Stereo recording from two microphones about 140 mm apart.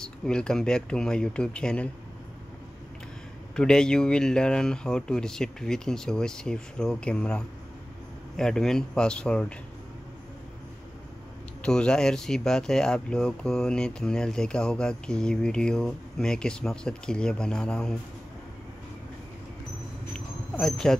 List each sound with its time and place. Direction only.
0.0 s speech: 5° left (ahead or behind)
3.5 s speech: 5° left (ahead or behind)
11.6 s speech: 5° left (ahead or behind)
20.5 s speech: 5° left (ahead or behind)